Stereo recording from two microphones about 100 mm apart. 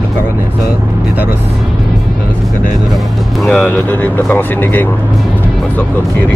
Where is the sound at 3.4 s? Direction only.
10° left (ahead or behind).